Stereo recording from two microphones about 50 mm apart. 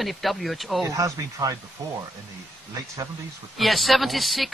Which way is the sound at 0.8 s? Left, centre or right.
Right.